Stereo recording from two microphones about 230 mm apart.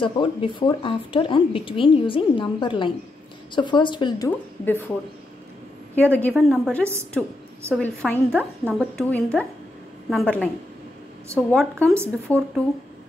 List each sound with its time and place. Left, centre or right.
0.0 s speech: left
4.6 s speech: centre
6.1 s speech: centre
7.8 s speech: centre